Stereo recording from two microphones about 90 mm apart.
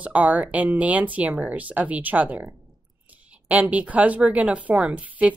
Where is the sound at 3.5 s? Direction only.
15° right (ahead or behind).